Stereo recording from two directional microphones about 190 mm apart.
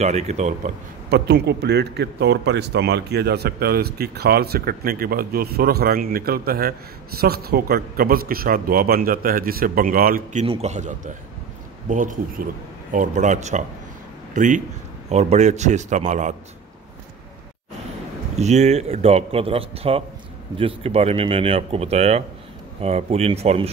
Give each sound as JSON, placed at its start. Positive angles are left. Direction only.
{"t": 0.0, "sound": "a man's voice", "side_deg": -35}
{"t": 1.1, "sound": "a man's voice", "side_deg": -60}
{"t": 10.4, "sound": "a man's voice", "side_deg": -35}
{"t": 18.3, "sound": "a man's voice", "side_deg": -35}